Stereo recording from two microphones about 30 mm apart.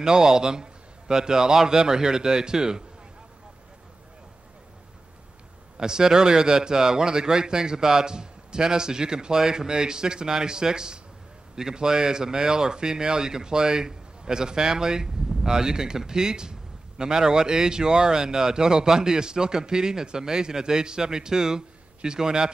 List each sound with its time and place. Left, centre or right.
0.0 s speech: centre
5.8 s speech: right